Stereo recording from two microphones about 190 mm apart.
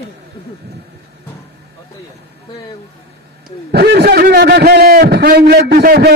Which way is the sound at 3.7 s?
55° right (ahead or behind).